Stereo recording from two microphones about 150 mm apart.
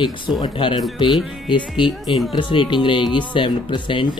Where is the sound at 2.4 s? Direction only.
35° left (ahead or behind).